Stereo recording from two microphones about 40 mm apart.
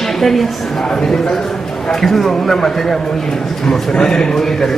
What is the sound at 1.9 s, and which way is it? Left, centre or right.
A man's voice, centre.